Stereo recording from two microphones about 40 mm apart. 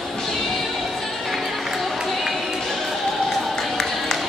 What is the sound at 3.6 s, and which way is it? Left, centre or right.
Music, centre.